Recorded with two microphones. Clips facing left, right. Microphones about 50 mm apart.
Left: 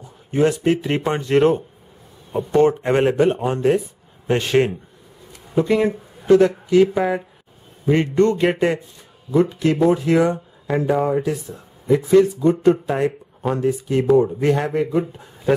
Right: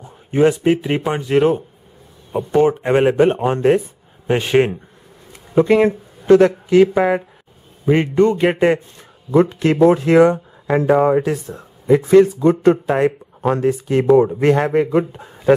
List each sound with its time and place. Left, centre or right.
0.0 s speech: right
3.2 s speech: right
4.3 s speech: centre
5.5 s speech: right
7.8 s speech: centre
8.5 s speech: right
9.3 s speech: right
9.8 s speech: right